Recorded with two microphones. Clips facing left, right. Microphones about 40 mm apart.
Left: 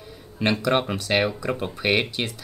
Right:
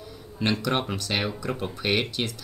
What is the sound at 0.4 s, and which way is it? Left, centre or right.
Speech, centre.